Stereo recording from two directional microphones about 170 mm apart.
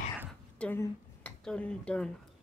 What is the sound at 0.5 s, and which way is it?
Speech, 10° left (ahead or behind).